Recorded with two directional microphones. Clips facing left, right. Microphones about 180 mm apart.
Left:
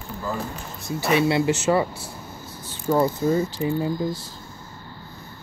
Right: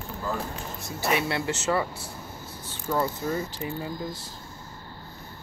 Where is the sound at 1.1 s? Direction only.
25° left (ahead or behind).